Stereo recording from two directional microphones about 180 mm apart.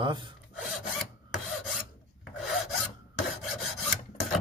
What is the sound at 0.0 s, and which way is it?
Speech, 25° right (ahead or behind).